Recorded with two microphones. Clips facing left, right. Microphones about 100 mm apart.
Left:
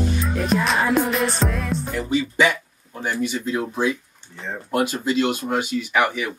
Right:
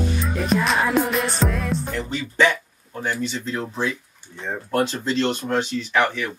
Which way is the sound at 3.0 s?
10° left (ahead or behind).